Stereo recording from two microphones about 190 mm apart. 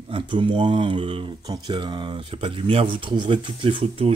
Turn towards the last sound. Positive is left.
turn(degrees=-30)  # may be behind; listen again after turning